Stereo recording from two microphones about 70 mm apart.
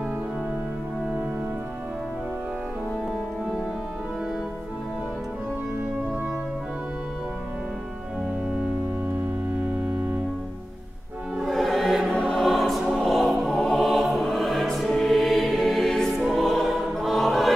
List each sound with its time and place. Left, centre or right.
9.2 s organ: centre
11.4 s music: centre
12.1 s choir: centre
12.4 s music: centre
17.0 s choir: centre